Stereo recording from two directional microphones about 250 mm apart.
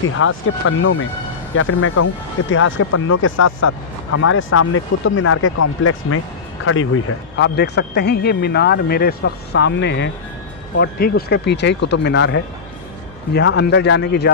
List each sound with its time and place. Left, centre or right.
0.2 s speech: left